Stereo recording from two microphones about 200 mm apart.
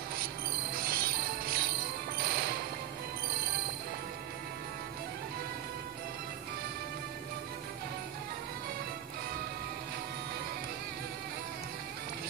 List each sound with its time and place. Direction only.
0.8 s jingle bell: 50° right (ahead or behind)
2.2 s music: 50° right (ahead or behind)